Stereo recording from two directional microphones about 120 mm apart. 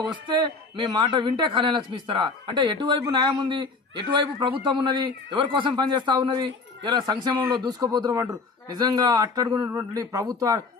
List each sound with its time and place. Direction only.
0.3 s a man's voice: 35° right (ahead or behind)